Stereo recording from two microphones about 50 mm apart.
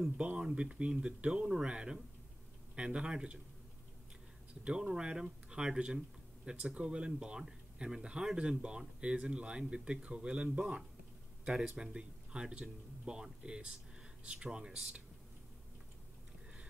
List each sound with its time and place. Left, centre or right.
0.2 s speech: right
4.6 s speech: centre
11.4 s speech: centre